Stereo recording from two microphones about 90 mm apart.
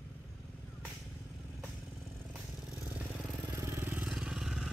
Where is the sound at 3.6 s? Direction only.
25° right (ahead or behind).